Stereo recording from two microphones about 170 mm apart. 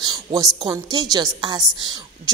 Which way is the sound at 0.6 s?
20° right (ahead or behind).